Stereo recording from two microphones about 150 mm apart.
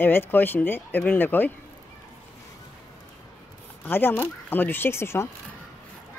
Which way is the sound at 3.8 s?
15° left (ahead or behind).